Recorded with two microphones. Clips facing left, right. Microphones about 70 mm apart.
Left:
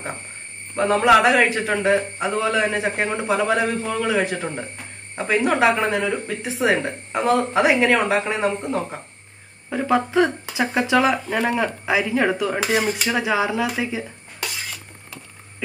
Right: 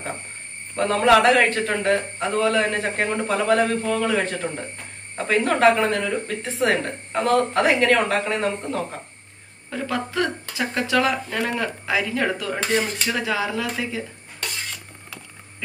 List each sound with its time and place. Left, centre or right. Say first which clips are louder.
0.7 s speech: left 1 dB; centre